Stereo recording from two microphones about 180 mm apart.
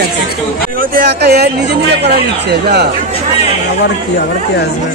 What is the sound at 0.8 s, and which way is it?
Speech, 55° right (ahead or behind).